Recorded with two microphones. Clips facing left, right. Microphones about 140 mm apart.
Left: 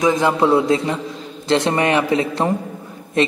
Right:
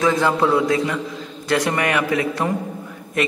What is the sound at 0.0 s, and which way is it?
A man's voice, 15° left (ahead or behind).